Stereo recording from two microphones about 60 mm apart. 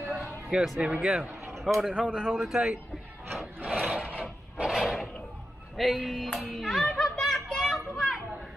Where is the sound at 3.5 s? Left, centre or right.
Right.